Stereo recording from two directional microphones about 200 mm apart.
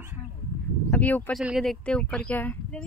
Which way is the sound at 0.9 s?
10° left (ahead or behind).